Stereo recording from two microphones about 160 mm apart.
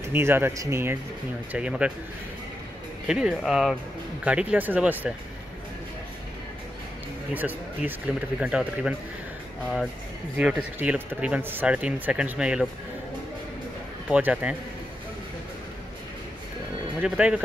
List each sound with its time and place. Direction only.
0.1 s speech: 15° right (ahead or behind)
3.1 s speech: 5° right (ahead or behind)
7.3 s speech: 10° right (ahead or behind)
10.3 s speech: 10° right (ahead or behind)
14.0 s speech: 10° right (ahead or behind)
17.0 s speech: 5° right (ahead or behind)